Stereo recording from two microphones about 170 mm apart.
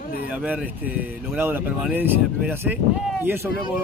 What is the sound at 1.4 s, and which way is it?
Speech, 10° right (ahead or behind).